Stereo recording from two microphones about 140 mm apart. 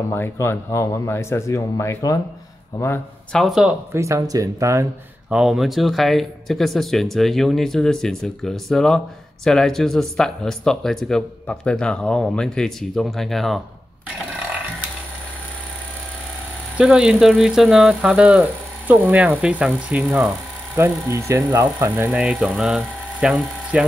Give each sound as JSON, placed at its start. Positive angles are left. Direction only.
{"t": 0.1, "sound": "speech", "side_deg": 20}
{"t": 3.3, "sound": "speech", "side_deg": 0}
{"t": 3.9, "sound": "speech", "side_deg": -20}
{"t": 5.3, "sound": "speech", "side_deg": -5}
{"t": 16.7, "sound": "speech", "side_deg": -5}
{"t": 22.1, "sound": "speech", "side_deg": -5}